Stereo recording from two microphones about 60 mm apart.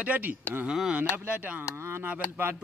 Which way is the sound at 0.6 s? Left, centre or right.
Centre.